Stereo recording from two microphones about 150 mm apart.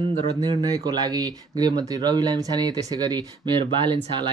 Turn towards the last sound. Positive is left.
turn(degrees=-30)  # may be behind; listen again after turning